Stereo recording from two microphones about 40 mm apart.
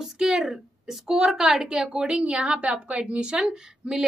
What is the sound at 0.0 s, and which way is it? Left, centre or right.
A woman's voice, centre.